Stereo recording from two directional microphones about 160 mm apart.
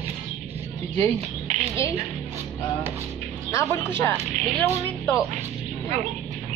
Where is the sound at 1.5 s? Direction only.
50° right (ahead or behind).